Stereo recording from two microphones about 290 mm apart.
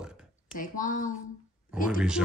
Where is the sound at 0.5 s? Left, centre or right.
Left.